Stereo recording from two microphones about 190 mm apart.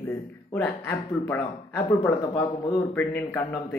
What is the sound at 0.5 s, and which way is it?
Speech, 15° left (ahead or behind).